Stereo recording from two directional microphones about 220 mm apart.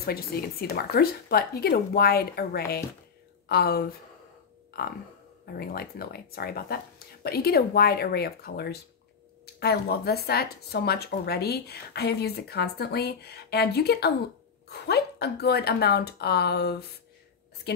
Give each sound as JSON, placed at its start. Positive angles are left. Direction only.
{"t": 0.0, "sound": "speech", "side_deg": 45}
{"t": 4.7, "sound": "a sound", "side_deg": 45}
{"t": 5.6, "sound": "a woman's voice", "side_deg": 45}